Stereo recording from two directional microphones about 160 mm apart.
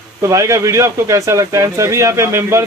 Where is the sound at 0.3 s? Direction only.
20° right (ahead or behind).